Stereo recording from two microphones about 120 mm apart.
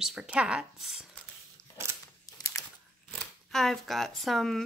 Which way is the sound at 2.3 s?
30° left (ahead or behind).